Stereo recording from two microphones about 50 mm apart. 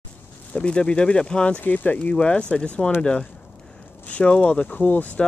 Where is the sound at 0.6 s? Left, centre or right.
Left.